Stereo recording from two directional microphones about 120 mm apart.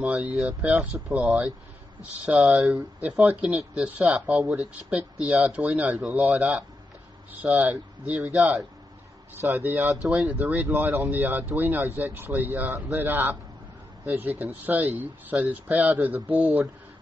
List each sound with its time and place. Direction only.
0.0 s speech: 5° right (ahead or behind)